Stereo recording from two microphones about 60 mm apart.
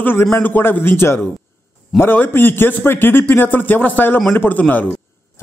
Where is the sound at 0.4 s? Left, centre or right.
Left.